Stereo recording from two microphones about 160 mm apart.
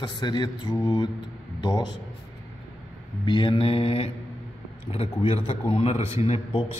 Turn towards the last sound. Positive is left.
turn(degrees=40)  # may be behind; listen again after turning